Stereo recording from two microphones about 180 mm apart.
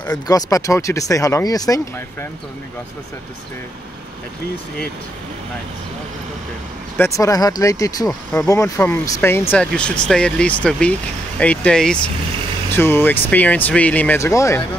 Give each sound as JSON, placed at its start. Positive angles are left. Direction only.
{"t": 0.1, "sound": "speech", "side_deg": 20}
{"t": 7.0, "sound": "speech", "side_deg": 20}
{"t": 8.1, "sound": "speech", "side_deg": 10}